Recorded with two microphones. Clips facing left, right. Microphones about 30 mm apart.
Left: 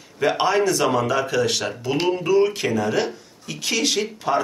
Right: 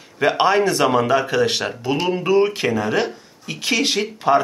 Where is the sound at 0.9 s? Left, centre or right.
Right.